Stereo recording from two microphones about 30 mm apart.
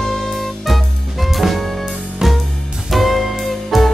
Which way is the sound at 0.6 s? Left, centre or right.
Centre.